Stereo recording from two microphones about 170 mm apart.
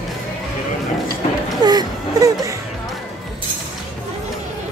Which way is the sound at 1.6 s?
25° right (ahead or behind).